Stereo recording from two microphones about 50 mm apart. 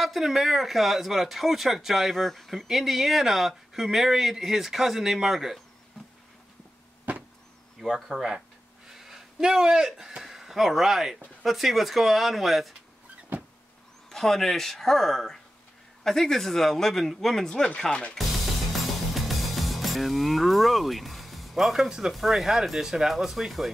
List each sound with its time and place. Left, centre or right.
0.0 s speech: centre
7.1 s power windows: right
8.1 s speech: centre
14.0 s speech: centre
18.7 s music: centre